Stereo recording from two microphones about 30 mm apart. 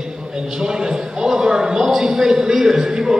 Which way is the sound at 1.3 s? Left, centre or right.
Right.